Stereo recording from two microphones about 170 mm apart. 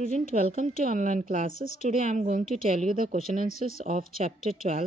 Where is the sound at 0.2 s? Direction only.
50° right (ahead or behind).